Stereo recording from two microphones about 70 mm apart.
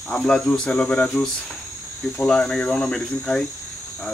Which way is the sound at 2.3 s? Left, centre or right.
Centre.